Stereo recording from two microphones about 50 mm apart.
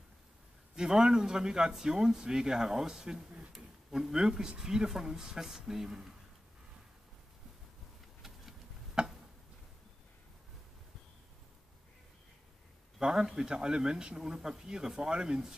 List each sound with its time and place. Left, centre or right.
0.7 s speech: centre
9.0 s a sound: centre
13.0 s speech: centre